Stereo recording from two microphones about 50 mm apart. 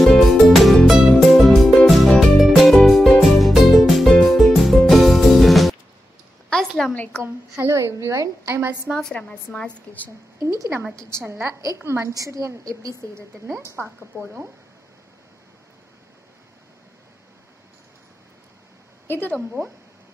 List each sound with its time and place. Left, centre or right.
0.0 s music: centre
6.5 s a sound: centre
7.5 s a woman's voice: right
8.9 s a woman's voice: right
11.0 s a woman's voice: centre
11.2 s a woman's voice: right
11.7 s a woman's voice: right
19.0 s speech: left